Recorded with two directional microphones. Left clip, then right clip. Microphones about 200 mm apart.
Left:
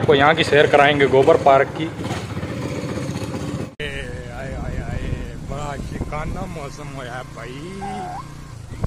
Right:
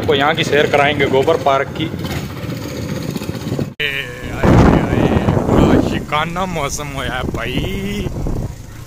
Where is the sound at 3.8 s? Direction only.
Centre (ahead or behind).